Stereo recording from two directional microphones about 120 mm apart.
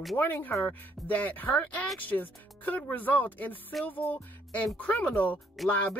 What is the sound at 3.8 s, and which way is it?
Music, 15° left (ahead or behind).